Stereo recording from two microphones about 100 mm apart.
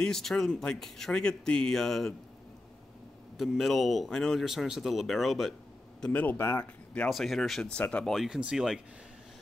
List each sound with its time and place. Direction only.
0.0 s speech: 5° left (ahead or behind)
3.3 s speech: centre (ahead or behind)
5.9 s speech: 15° left (ahead or behind)
7.1 s speech: centre (ahead or behind)